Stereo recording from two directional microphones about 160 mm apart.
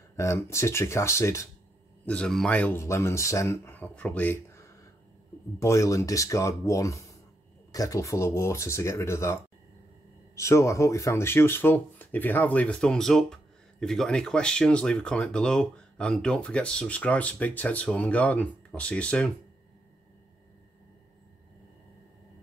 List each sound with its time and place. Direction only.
0.1 s speech: 15° left (ahead or behind)
2.0 s speech: 5° left (ahead or behind)